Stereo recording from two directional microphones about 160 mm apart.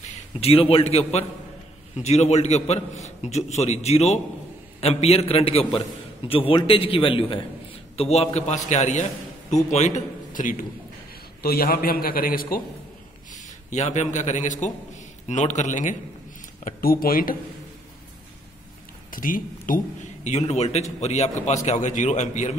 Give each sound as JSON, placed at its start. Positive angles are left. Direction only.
{"t": 0.4, "sound": "a man's voice", "side_deg": 35}
{"t": 11.4, "sound": "a man's voice", "side_deg": 70}
{"t": 13.3, "sound": "a man's voice", "side_deg": 50}
{"t": 16.6, "sound": "a man's voice", "side_deg": 65}
{"t": 19.0, "sound": "speech", "side_deg": 60}
{"t": 20.2, "sound": "a man's voice", "side_deg": 45}